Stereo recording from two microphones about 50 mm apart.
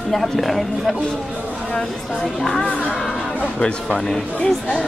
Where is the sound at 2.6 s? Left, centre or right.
Left.